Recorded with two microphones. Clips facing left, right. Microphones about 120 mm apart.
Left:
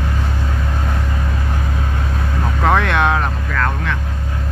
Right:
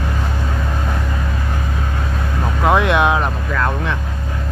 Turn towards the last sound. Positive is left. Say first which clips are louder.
# right 1 dB
turn(degrees=-20)  # may be behind; listen again after turning